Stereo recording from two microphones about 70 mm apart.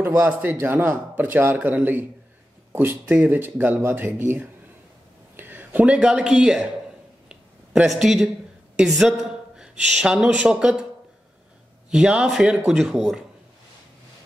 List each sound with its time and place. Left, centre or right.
0.0 s speech: right
5.3 s a sound: right
5.9 s speech: centre
7.2 s a sound: centre
8.7 s speech: centre
11.9 s speech: centre